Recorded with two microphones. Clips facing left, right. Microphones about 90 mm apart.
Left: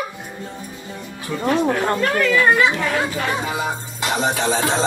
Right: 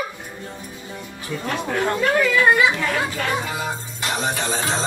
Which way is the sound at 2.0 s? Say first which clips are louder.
Right 1 dB; 5° right (ahead or behind).